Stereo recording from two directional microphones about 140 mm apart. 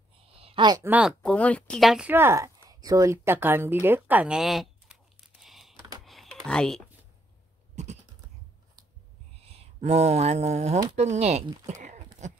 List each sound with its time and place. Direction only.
0.4 s a sound: 45° right (ahead or behind)
0.8 s speech: 10° right (ahead or behind)
1.2 s speech: 10° left (ahead or behind)
2.0 s a woman's voice: 15° right (ahead or behind); by 5.8 s centre (ahead or behind)
6.0 s computer keyboard: centre (ahead or behind)
7.7 s typing: 55° right (ahead or behind)
9.4 s speech: 45° right (ahead or behind)
11.6 s a sound: 60° right (ahead or behind)
12.2 s speech: 55° right (ahead or behind)